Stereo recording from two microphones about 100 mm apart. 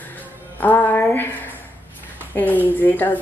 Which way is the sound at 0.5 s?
15° left (ahead or behind).